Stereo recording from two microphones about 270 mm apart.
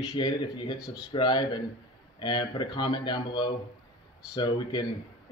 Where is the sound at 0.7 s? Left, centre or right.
Centre.